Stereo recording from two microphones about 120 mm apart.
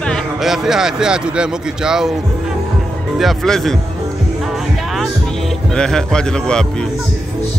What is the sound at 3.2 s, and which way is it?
Speech, centre (ahead or behind).